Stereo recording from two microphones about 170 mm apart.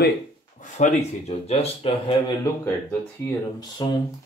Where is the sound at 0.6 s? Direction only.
50° left (ahead or behind).